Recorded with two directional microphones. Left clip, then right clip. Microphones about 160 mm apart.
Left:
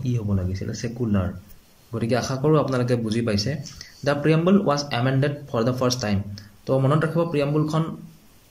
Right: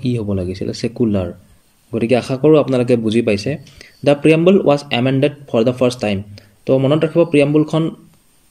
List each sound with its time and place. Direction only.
0.0 s a man's voice: 25° right (ahead or behind)